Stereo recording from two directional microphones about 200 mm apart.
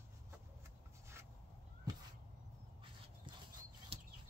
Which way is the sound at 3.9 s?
30° right (ahead or behind).